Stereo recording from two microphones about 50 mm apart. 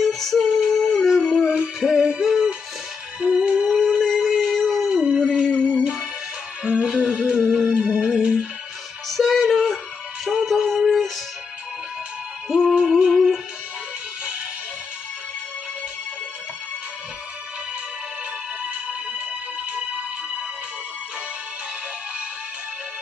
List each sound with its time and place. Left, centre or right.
0.0 s music: centre
0.6 s a sound: centre
1.3 s music: centre
3.2 s music: right
3.6 s music: centre
4.1 s a sound: centre
4.8 s dog: centre
5.5 s music: left
6.6 s music: centre
9.1 s music: centre
12.4 s music: centre
18.6 s music: centre